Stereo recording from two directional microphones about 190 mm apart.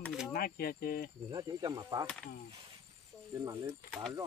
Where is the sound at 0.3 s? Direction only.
50° left (ahead or behind).